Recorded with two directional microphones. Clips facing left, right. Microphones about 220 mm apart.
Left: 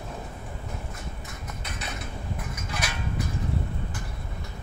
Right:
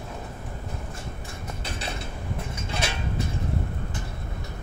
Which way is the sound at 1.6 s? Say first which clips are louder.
Right 3 dB; 30° right (ahead or behind).